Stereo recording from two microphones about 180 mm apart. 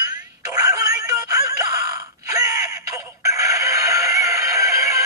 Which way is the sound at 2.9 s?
15° right (ahead or behind).